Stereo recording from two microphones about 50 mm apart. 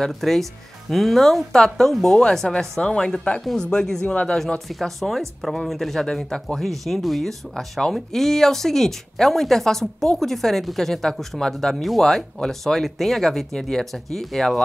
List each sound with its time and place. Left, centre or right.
0.0 s speech: centre; by 4.4 s left
4.6 s speech: centre